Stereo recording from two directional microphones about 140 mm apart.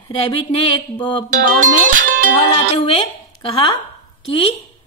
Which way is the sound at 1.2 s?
75° right (ahead or behind).